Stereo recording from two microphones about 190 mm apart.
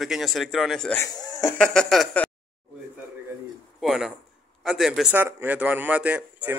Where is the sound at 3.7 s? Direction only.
Centre (ahead or behind).